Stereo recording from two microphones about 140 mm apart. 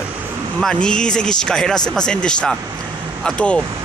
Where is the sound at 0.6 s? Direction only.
5° left (ahead or behind).